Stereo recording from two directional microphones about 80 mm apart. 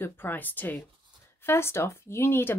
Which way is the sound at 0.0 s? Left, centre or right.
Left.